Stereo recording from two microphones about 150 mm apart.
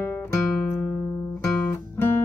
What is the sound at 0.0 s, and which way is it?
Music, 15° left (ahead or behind).